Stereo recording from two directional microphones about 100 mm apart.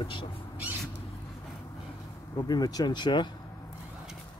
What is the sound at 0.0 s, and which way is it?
Speech, 55° left (ahead or behind).